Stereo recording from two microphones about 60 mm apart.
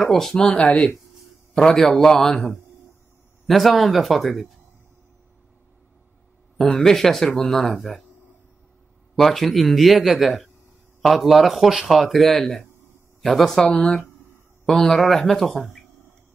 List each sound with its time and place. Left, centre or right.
0.0 s a man's voice: centre
0.4 s a man's voice: centre
6.7 s a man's voice: centre
9.1 s a man's voice: centre